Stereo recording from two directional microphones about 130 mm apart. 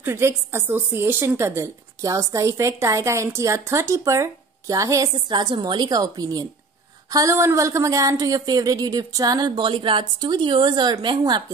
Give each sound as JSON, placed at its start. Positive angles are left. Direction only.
{"t": 0.0, "sound": "a woman's voice", "side_deg": -20}